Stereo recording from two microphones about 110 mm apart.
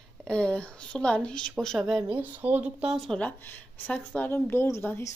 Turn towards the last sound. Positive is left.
turn(degrees=25)  # may be behind; listen again after turning